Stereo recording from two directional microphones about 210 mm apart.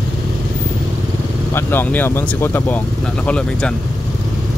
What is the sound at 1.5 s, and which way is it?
Speech, 10° left (ahead or behind).